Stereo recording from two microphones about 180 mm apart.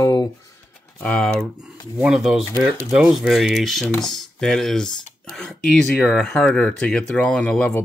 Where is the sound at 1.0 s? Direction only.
5° left (ahead or behind).